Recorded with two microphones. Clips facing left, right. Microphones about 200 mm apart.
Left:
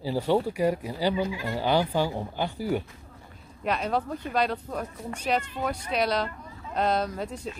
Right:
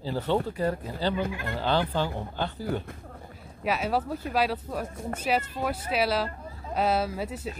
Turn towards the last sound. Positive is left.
turn(degrees=-5)  # may be behind; listen again after turning